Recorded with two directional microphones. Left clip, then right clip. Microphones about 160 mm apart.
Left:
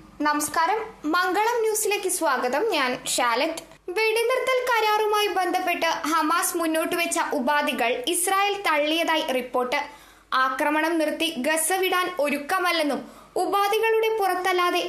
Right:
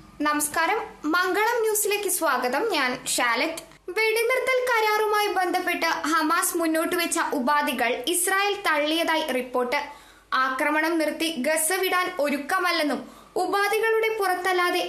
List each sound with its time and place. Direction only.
0.2 s speech: 5° left (ahead or behind)